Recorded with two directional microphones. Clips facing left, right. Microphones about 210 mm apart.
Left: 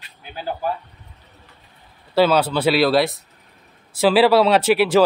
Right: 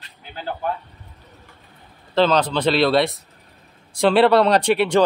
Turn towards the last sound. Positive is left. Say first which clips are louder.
# left 2 dB
turn(degrees=5)  # may be behind; listen again after turning